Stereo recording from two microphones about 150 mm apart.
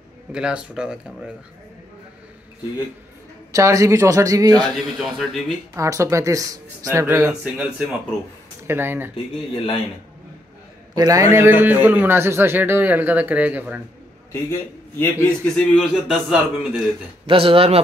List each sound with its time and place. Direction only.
0.3 s a man's voice: 5° right (ahead or behind)
3.5 s speech: 20° right (ahead or behind)
4.9 s a man's voice: centre (ahead or behind)
5.8 s speech: 20° right (ahead or behind)
7.4 s a man's voice: 5° right (ahead or behind)
9.1 s speech: 35° left (ahead or behind)
11.0 s a man's voice: 20° right (ahead or behind)
14.5 s a man's voice: 15° left (ahead or behind)
15.4 s a man's voice: centre (ahead or behind)
17.3 s a man's voice: 35° right (ahead or behind)